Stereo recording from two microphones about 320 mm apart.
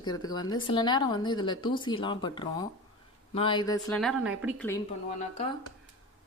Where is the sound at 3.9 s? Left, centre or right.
Centre.